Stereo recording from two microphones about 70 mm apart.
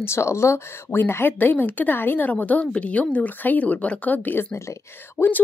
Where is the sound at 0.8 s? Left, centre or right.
Left.